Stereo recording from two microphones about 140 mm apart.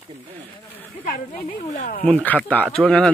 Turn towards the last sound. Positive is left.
turn(degrees=5)  # may be behind; listen again after turning